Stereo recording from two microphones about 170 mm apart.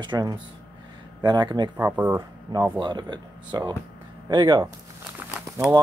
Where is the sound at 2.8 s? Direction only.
25° right (ahead or behind).